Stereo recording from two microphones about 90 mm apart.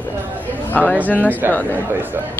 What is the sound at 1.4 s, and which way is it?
Speech, 25° right (ahead or behind).